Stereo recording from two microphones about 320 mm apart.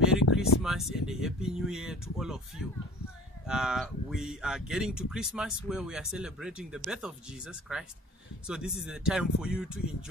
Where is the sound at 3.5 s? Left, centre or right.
Centre.